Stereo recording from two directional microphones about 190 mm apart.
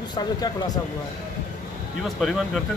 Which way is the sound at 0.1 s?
20° left (ahead or behind).